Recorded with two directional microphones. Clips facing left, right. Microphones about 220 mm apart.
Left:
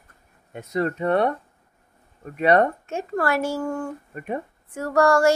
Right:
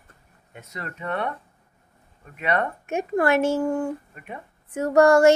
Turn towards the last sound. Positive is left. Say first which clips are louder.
# right 3 dB
turn(degrees=-20)  # may be behind; listen again after turning